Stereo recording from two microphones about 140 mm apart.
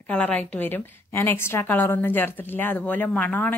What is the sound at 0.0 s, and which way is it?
A woman's voice, 10° left (ahead or behind).